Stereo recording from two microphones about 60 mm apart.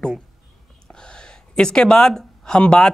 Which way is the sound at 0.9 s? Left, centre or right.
Centre.